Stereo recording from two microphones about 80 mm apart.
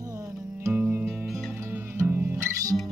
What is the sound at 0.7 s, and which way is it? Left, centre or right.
Music, right.